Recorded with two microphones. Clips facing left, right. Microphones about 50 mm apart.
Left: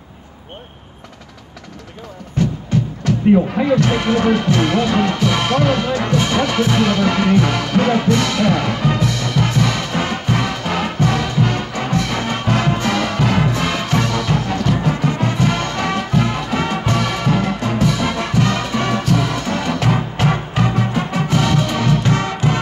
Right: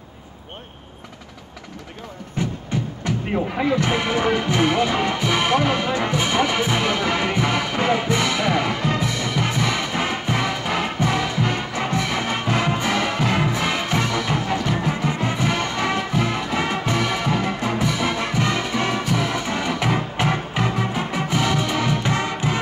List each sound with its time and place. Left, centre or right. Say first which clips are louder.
2.3 s music: left 7 dB; centre
3.5 s speech: left 5 dB; centre
3.8 s music: left 4 dB; centre